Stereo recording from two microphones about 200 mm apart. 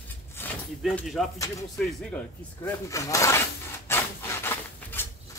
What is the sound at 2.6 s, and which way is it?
Rub, 15° left (ahead or behind).